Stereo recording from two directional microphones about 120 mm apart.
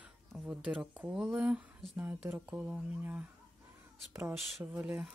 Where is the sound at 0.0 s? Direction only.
5° right (ahead or behind).